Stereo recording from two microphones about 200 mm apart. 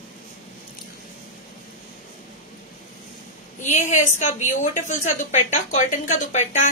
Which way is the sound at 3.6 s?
40° left (ahead or behind).